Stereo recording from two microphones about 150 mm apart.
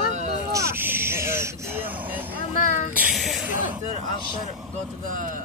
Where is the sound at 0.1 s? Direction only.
50° right (ahead or behind).